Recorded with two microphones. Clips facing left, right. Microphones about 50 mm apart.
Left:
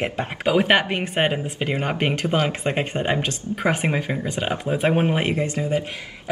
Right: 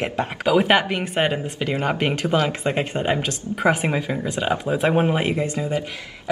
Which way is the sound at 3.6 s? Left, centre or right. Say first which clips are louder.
Right 3 dB; left.